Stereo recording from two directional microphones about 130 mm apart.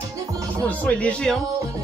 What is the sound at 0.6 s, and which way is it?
Speech, 10° left (ahead or behind).